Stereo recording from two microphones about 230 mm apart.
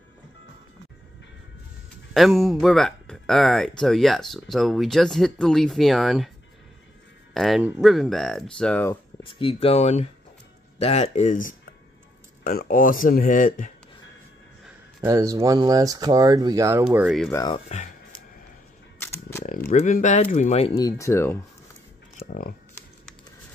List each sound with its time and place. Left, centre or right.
2.1 s speech: centre
7.3 s speech: centre
9.2 s speech: left
15.0 s speech: centre
17.3 s speech: centre
17.6 s a sound: left
18.9 s camera: centre
19.4 s speech: left
20.7 s speech: centre
22.2 s speech: left